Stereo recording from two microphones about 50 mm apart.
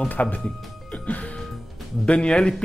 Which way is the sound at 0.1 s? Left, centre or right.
Left.